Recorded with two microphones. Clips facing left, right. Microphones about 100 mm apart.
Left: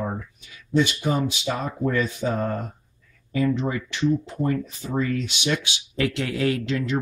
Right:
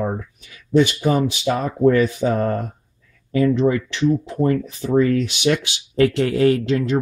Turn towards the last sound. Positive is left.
turn(degrees=-40)  # may be behind; listen again after turning